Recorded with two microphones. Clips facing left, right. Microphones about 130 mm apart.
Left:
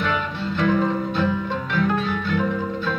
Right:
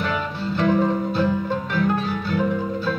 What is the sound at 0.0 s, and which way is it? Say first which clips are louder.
Music: left 1 dB; 35° right (ahead or behind).